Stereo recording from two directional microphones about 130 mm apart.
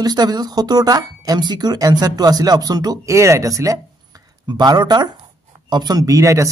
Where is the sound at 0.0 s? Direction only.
30° right (ahead or behind).